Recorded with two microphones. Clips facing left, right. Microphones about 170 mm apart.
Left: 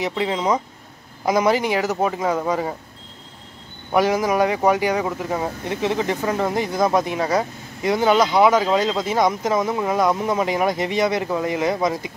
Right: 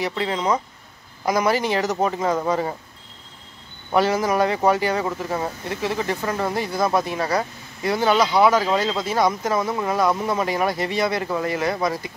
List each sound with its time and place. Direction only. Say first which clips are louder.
0.0 s speech: left 2 dB; 15° left (ahead or behind)
3.9 s speech: left 1 dB; 15° left (ahead or behind)